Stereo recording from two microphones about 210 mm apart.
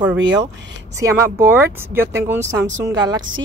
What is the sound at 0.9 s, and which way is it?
Speech, 15° right (ahead or behind).